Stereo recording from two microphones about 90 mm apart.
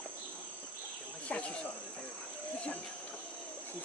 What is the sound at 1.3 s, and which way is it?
Speech, 10° left (ahead or behind).